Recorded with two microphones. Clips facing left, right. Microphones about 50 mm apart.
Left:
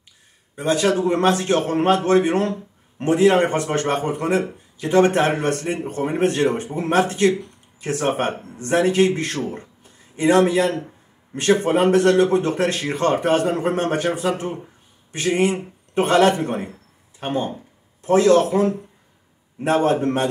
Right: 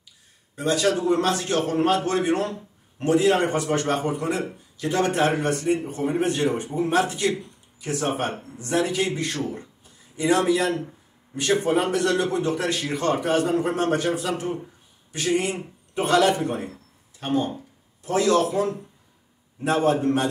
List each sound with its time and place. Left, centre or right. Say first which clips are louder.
0.6 s a man's voice: left 3 dB; left
17.2 s a man's voice: left 1 dB; left